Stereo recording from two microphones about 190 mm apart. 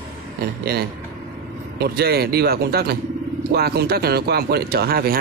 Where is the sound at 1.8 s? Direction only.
55° right (ahead or behind).